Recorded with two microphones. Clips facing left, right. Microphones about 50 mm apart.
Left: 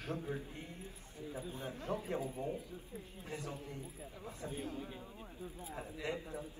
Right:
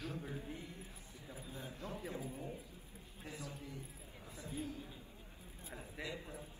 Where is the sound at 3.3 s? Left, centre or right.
Left.